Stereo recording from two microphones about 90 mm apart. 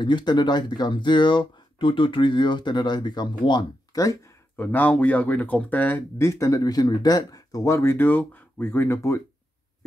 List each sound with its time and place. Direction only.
0.0 s speech: 55° left (ahead or behind)
3.9 s speech: 40° left (ahead or behind)
4.6 s speech: 20° left (ahead or behind)